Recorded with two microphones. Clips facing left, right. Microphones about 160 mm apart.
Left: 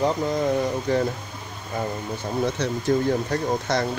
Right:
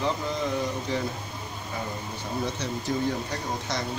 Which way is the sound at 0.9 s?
55° left (ahead or behind).